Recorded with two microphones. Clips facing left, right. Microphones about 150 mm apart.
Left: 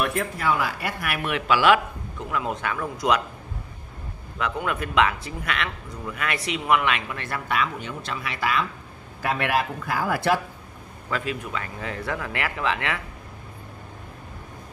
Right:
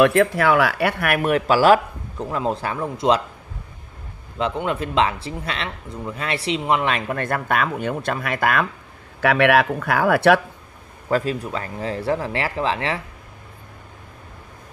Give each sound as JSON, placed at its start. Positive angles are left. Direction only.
{"t": 0.0, "sound": "speech", "side_deg": -90}
{"t": 4.4, "sound": "speech", "side_deg": -25}
{"t": 9.2, "sound": "speech", "side_deg": -75}
{"t": 11.1, "sound": "speech", "side_deg": -40}